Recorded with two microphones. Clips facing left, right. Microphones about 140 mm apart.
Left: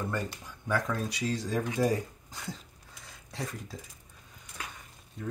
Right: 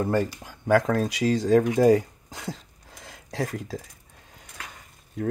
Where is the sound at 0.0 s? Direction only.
90° right.